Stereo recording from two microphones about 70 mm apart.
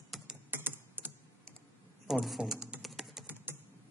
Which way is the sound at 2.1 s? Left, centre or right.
Centre.